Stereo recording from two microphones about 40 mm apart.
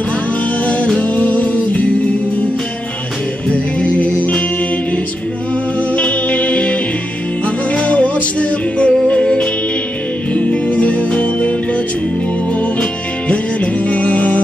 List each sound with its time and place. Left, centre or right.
1.0 s music: left
3.4 s music: left
5.9 s music: left
10.3 s music: left
13.3 s music: left